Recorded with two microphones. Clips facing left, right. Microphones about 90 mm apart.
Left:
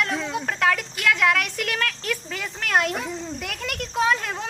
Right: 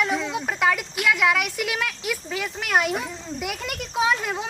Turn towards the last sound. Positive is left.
turn(degrees=-5)  # may be behind; listen again after turning